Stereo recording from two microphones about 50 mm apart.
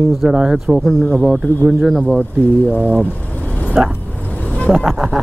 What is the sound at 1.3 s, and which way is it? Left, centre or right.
Speech, centre.